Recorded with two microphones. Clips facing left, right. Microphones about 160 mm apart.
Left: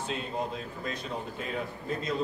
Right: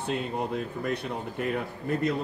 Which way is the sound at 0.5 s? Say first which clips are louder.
Right 6 dB; 60° right (ahead or behind).